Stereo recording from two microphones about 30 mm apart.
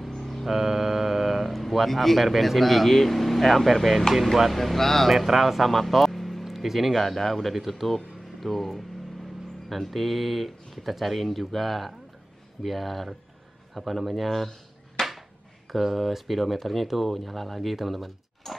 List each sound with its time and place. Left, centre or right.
0.1 s a sound: centre
0.5 s speech: centre
5.1 s speech: centre
6.4 s speech: centre
7.0 s speech: centre
15.0 s a sound: centre
15.7 s speech: centre